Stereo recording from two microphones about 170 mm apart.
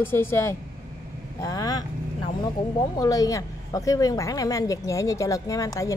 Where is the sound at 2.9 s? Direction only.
20° left (ahead or behind).